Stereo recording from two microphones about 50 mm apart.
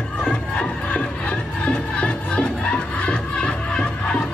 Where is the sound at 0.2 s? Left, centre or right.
Centre.